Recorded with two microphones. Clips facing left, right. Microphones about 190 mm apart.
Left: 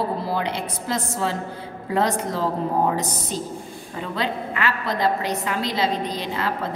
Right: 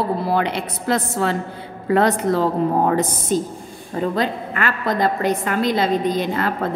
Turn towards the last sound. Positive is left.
turn(degrees=-50)  # may be behind; listen again after turning